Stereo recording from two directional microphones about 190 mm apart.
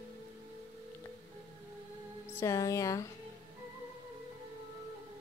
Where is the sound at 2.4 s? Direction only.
15° left (ahead or behind).